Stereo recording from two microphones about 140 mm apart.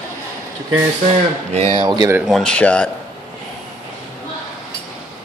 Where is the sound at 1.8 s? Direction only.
25° right (ahead or behind).